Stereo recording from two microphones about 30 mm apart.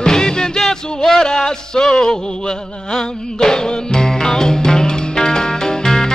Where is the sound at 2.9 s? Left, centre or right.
Left.